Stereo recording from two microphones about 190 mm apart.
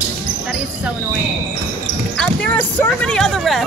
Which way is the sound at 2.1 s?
5° left (ahead or behind).